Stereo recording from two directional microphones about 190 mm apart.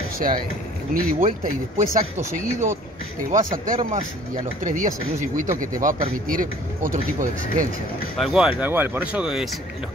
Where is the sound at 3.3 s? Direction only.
45° right (ahead or behind).